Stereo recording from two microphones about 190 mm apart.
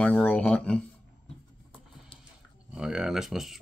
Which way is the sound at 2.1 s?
25° left (ahead or behind).